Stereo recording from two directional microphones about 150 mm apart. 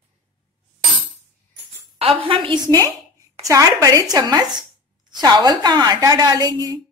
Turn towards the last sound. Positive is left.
turn(degrees=-25)  # may be behind; listen again after turning